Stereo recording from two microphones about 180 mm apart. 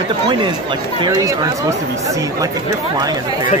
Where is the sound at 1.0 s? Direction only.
20° right (ahead or behind).